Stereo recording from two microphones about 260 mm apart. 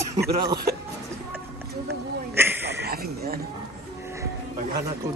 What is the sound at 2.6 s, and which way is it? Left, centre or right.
Speech, right.